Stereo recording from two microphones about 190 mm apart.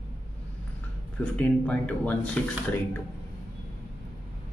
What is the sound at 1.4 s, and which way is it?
Speech, 5° left (ahead or behind).